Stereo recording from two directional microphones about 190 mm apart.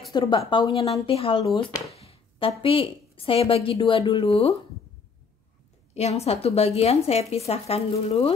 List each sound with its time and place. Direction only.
0.1 s a woman's voice: 20° left (ahead or behind)
2.0 s a sound: 30° left (ahead or behind)
2.6 s a woman's voice: 30° left (ahead or behind)
5.9 s a woman's voice: 35° left (ahead or behind)